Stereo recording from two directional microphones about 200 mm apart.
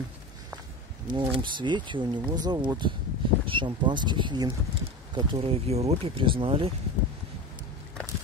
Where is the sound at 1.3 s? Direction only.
25° right (ahead or behind).